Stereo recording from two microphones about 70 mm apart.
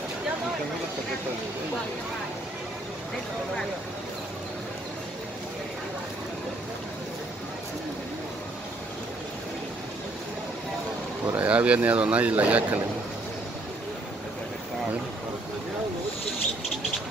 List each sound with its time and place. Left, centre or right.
11.3 s speech: centre